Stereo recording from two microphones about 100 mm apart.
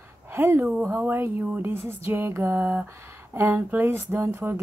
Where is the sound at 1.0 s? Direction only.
20° right (ahead or behind).